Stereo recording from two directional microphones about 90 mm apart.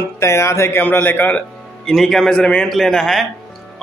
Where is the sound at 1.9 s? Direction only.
5° left (ahead or behind).